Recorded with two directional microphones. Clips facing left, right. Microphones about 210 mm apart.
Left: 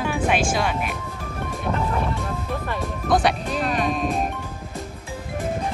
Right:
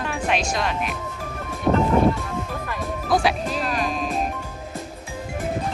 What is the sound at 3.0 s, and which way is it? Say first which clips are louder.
Music: left 1 dB; centre (ahead or behind).